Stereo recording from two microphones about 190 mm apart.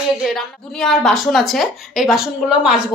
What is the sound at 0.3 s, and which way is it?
A woman's voice, centre (ahead or behind).